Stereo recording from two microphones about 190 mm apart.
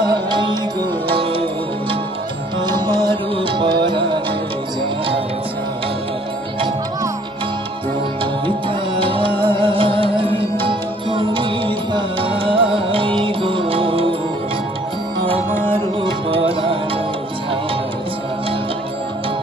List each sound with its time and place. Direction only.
0.0 s music: 25° right (ahead or behind)
3.1 s music: 25° right (ahead or behind)
8.2 s music: 25° right (ahead or behind)
15.7 s music: 25° right (ahead or behind)